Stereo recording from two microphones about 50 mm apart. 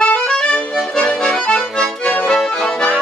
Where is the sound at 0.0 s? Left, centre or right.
Left.